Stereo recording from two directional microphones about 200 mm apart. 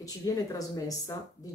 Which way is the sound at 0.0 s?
15° left (ahead or behind).